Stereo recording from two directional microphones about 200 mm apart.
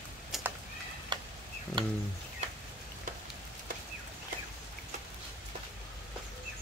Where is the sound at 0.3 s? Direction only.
Centre (ahead or behind).